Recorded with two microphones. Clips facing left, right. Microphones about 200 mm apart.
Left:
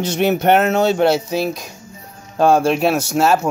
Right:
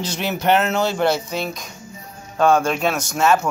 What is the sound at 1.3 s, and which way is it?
Speech, 5° left (ahead or behind).